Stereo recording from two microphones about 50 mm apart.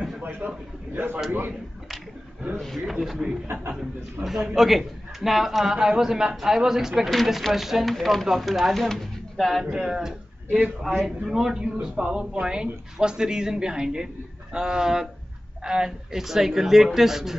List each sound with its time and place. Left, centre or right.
0.2 s a sound: right
2.8 s speech: centre
9.7 s speech: centre
10.8 s speech: centre
11.1 s speech: centre